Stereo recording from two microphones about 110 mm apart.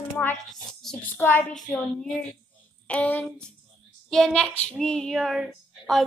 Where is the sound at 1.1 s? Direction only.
20° left (ahead or behind).